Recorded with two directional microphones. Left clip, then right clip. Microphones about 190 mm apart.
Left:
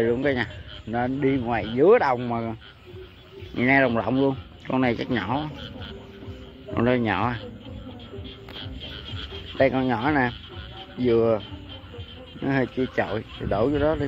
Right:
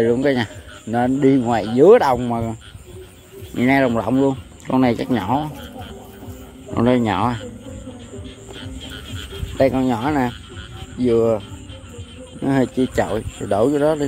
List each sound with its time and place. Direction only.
0.0 s speech: 20° right (ahead or behind)
3.5 s speech: 15° right (ahead or behind)
6.7 s speech: 15° right (ahead or behind)
9.6 s speech: 10° right (ahead or behind)
12.4 s speech: 15° right (ahead or behind)